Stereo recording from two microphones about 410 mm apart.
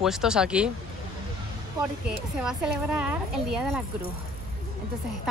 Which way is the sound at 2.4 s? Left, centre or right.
Centre.